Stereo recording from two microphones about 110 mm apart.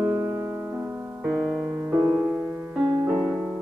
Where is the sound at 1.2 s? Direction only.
5° right (ahead or behind).